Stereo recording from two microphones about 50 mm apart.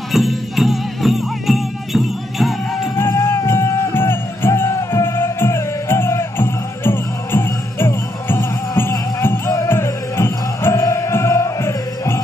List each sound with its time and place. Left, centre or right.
0.1 s music: centre
3.0 s music: left
9.5 s music: left